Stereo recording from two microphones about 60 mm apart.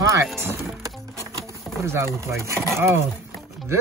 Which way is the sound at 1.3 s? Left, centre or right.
Right.